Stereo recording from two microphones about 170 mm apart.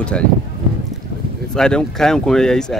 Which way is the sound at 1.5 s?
5° left (ahead or behind).